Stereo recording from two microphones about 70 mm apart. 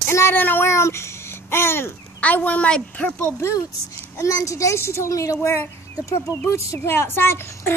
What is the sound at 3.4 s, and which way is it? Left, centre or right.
A woman's voice, left.